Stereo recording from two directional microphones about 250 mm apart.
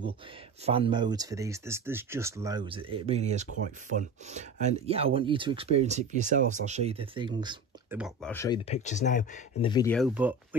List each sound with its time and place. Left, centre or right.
0.7 s speech: right
8.0 s speech: centre
8.6 s speech: left
9.7 s speech: centre
9.9 s speech: centre